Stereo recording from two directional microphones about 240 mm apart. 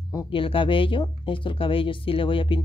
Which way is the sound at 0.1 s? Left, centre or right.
Centre.